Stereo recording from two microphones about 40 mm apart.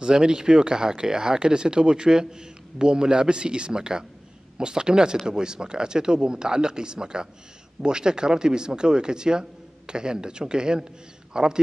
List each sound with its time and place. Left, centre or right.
0.0 s speech: centre